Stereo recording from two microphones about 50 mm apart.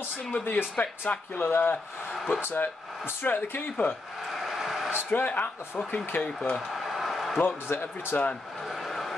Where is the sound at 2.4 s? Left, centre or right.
Left.